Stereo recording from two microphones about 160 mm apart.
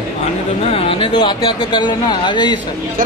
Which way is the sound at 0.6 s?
40° left (ahead or behind).